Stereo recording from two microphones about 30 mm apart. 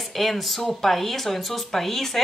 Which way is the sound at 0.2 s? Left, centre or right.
Centre.